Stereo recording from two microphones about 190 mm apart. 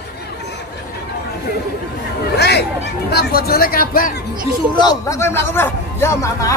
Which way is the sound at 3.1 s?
55° left (ahead or behind).